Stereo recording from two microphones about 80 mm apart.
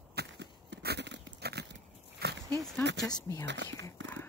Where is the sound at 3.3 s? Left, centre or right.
Left.